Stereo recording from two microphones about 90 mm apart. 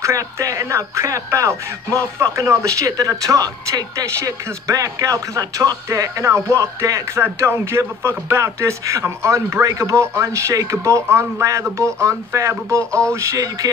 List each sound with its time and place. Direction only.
0.0 s speech: 35° right (ahead or behind)